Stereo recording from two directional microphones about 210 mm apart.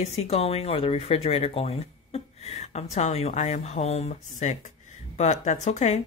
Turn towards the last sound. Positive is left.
turn(degrees=35)  # may be behind; listen again after turning